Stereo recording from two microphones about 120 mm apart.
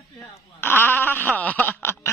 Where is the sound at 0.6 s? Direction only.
15° left (ahead or behind).